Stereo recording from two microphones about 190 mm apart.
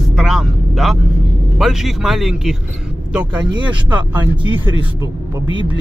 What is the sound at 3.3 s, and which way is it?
Speech, 25° right (ahead or behind).